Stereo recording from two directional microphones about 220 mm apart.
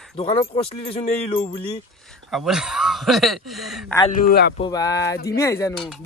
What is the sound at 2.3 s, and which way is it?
A man's voice, centre (ahead or behind).